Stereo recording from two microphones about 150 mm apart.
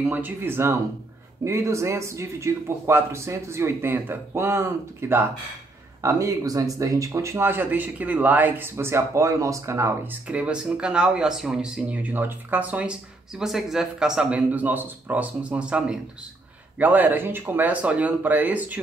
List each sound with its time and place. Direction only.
0.0 s speech: 10° right (ahead or behind)